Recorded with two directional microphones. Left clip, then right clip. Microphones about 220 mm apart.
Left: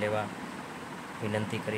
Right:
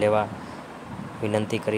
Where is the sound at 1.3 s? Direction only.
25° right (ahead or behind).